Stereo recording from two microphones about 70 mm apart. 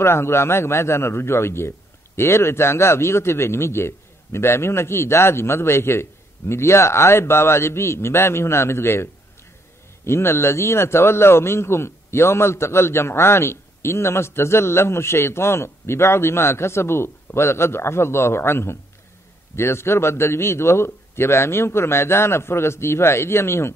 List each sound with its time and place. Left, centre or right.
0.0 s a man's voice: left